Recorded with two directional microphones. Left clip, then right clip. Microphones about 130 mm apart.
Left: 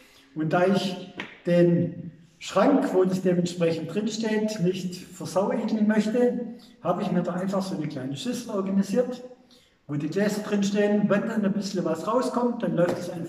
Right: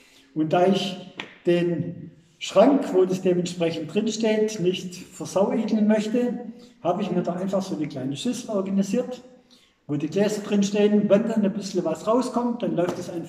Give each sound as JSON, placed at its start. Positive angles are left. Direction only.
{"t": 0.4, "sound": "a man's voice", "side_deg": -20}